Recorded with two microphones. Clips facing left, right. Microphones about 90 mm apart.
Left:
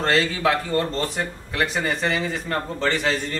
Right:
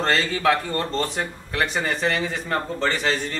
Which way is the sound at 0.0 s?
Centre (ahead or behind).